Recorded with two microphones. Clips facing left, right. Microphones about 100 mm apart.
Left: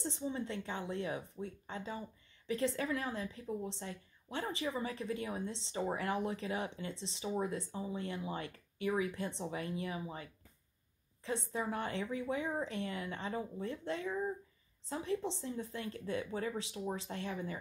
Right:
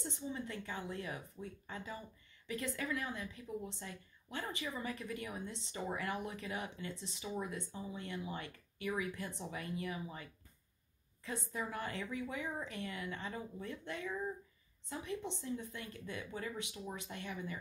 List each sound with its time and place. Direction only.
0.0 s speech: 30° left (ahead or behind)